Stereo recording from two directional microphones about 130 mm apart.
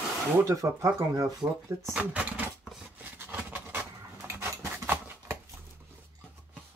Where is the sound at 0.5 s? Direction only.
25° right (ahead or behind).